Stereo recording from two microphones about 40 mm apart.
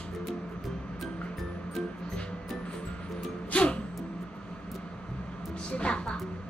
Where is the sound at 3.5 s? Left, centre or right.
Left.